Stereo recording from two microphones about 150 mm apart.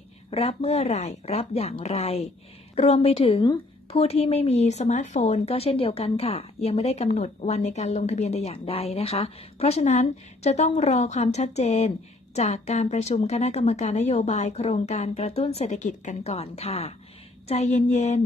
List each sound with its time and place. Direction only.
0.3 s a woman's voice: 45° left (ahead or behind)